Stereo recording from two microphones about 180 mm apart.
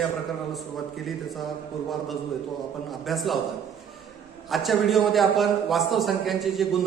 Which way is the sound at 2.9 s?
Centre (ahead or behind).